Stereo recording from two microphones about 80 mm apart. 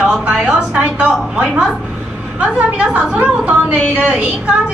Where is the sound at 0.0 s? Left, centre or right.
Centre.